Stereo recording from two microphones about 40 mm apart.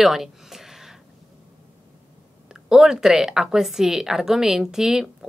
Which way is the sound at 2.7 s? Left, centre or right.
Centre.